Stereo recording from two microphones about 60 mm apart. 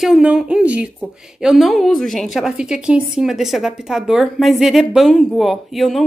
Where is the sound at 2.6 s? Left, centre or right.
Centre.